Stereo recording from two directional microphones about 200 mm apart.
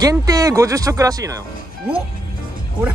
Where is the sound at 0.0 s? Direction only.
15° right (ahead or behind).